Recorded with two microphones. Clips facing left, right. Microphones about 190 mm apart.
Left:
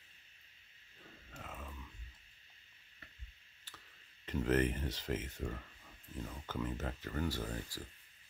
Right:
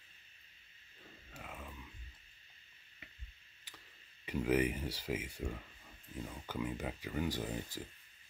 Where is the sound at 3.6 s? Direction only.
10° right (ahead or behind).